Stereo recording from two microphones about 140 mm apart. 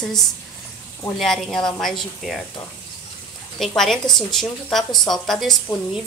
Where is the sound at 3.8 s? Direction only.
5° left (ahead or behind).